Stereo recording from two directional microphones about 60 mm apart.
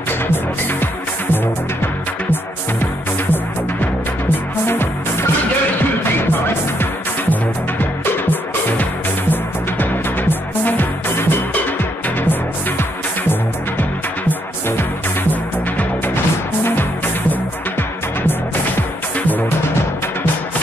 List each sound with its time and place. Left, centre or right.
3.8 s music: left
6.3 s music: left
19.1 s music: left